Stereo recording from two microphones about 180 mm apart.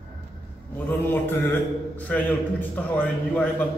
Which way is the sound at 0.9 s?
10° left (ahead or behind).